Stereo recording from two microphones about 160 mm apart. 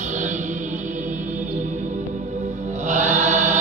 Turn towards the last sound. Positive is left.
turn(degrees=-50)  # may be behind; listen again after turning